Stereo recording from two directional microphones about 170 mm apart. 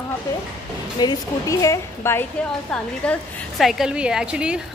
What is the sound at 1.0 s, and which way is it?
A woman's voice, 20° left (ahead or behind).